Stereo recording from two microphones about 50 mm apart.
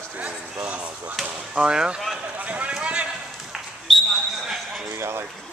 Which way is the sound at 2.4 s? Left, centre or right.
Right.